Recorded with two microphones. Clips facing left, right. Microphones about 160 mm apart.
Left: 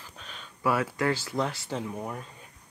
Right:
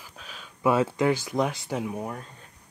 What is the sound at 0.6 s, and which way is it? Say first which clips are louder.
Speech: right 4 dB; 25° right (ahead or behind).